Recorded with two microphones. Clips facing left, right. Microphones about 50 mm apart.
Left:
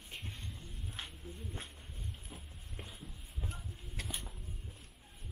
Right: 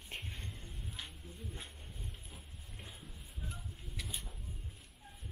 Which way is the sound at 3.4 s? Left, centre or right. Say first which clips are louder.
Left 2 dB; left.